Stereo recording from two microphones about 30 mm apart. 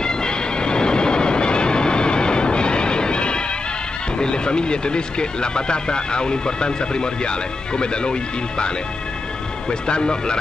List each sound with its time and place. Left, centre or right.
0.0 s vehicle: left
4.2 s speech: left